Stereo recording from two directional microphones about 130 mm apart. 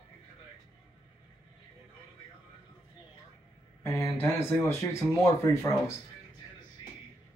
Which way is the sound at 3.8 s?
20° left (ahead or behind).